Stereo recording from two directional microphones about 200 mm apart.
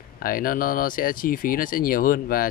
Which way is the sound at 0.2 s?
45° left (ahead or behind).